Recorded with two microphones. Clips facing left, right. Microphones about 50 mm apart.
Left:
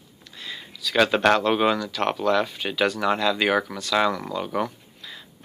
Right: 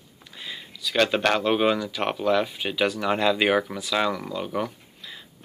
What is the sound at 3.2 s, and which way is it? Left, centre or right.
Speech, centre.